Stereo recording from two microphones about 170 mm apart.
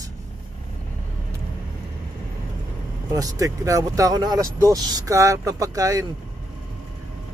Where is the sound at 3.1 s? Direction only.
20° right (ahead or behind).